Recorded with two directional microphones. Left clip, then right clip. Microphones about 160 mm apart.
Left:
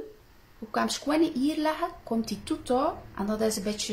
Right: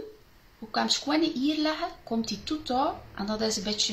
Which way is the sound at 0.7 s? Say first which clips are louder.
Even; 50° left (ahead or behind).